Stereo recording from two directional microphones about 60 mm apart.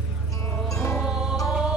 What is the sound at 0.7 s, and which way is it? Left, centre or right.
Music, left.